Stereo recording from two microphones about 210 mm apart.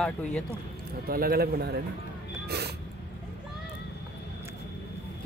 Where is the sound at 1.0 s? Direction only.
45° right (ahead or behind).